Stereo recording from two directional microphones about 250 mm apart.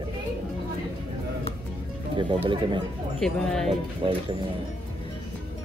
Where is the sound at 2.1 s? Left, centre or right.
Centre.